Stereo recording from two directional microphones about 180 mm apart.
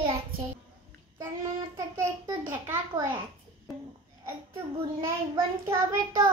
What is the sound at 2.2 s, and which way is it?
Speech, 15° right (ahead or behind).